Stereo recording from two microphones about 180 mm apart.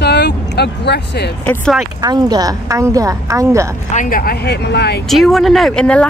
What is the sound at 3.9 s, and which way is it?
Speech, 45° left (ahead or behind).